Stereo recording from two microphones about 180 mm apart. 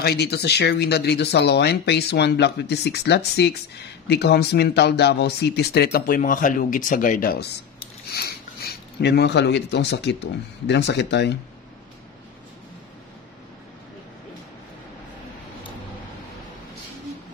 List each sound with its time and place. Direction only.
0.0 s speech: 65° left (ahead or behind)